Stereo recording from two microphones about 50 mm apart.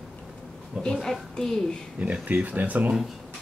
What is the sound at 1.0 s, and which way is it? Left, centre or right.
Speech, centre.